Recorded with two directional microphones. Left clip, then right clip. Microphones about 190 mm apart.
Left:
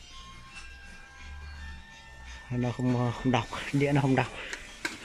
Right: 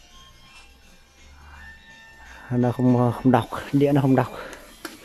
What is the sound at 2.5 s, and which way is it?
Speech, 10° right (ahead or behind).